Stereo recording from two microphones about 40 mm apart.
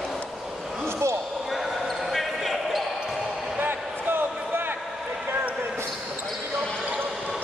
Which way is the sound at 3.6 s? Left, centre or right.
Right.